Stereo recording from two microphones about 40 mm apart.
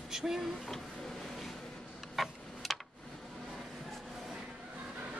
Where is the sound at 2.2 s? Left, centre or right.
Centre.